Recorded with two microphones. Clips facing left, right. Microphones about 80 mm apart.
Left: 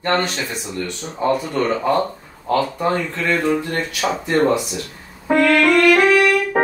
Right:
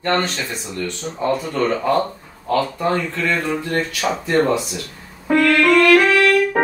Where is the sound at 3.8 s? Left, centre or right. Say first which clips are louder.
Even; centre.